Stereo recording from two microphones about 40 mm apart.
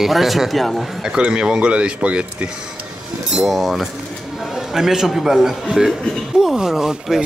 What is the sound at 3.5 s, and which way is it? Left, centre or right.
Speech, centre.